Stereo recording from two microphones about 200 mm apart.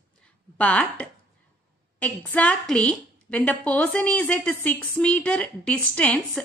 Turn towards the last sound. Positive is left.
turn(degrees=5)  # may be behind; listen again after turning